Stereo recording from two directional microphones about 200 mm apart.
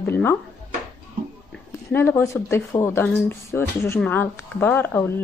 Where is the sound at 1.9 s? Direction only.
10° left (ahead or behind).